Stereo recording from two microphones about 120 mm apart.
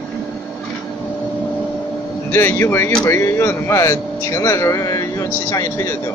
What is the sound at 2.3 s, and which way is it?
Speech, 20° left (ahead or behind).